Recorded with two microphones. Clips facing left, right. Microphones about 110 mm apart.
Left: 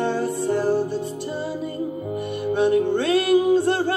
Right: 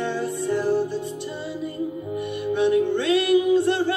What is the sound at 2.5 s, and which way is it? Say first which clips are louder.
Music: left 1 dB; 40° left (ahead or behind).